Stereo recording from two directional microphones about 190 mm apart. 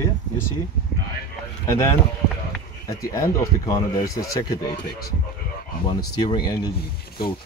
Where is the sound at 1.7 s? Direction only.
15° left (ahead or behind).